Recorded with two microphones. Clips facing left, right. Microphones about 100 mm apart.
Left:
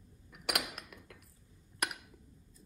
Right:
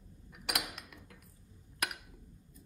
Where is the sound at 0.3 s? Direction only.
50° left (ahead or behind).